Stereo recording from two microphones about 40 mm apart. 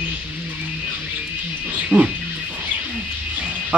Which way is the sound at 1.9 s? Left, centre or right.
Right.